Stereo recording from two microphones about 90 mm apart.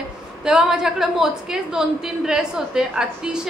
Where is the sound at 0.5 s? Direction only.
10° right (ahead or behind).